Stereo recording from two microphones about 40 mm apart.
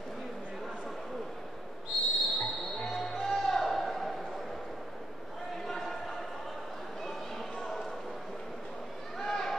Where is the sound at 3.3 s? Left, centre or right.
Centre.